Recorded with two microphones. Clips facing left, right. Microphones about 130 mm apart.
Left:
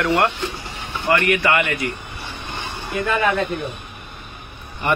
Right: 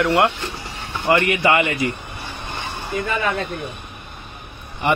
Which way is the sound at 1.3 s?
25° right (ahead or behind).